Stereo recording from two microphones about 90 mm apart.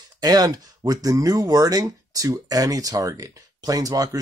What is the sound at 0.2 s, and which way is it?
Speech, 45° right (ahead or behind).